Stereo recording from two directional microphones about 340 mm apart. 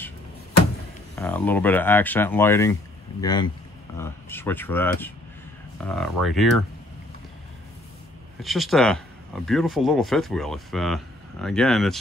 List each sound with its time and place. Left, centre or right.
1.1 s speech: centre
8.4 s speech: centre